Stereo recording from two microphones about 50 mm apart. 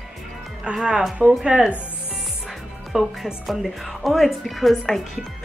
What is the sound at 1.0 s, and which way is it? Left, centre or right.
Speech, centre.